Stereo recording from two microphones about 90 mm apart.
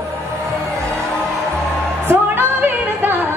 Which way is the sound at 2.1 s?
25° right (ahead or behind).